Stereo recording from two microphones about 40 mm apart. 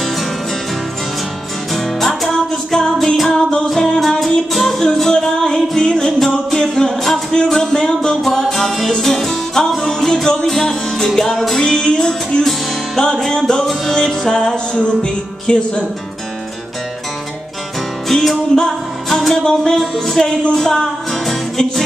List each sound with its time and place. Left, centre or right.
1.7 s music: centre
11.6 s music: centre
18.0 s music: centre